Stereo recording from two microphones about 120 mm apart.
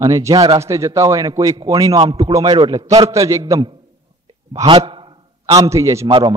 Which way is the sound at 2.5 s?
45° right (ahead or behind).